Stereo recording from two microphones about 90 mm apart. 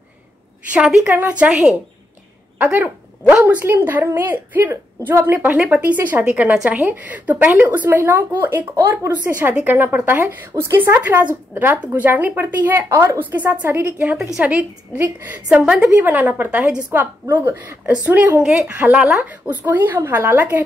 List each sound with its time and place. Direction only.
0.7 s a woman's voice: 5° right (ahead or behind)
1.0 s a woman's voice: 25° right (ahead or behind)
12.9 s a woman's voice: 30° right (ahead or behind)
13.3 s a woman's voice: 20° right (ahead or behind)